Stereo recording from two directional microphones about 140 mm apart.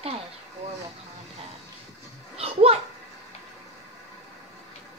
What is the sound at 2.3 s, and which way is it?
Children playing, 45° right (ahead or behind).